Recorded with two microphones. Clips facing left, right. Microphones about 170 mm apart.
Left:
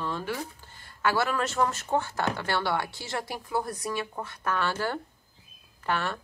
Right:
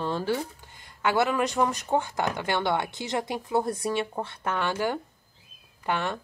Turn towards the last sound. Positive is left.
turn(degrees=-20)  # may be behind; listen again after turning